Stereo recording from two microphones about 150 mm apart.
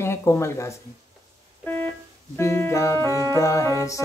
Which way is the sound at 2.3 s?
15° left (ahead or behind).